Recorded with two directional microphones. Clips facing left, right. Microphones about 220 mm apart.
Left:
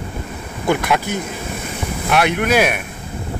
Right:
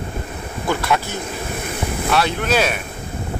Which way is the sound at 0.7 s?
20° left (ahead or behind).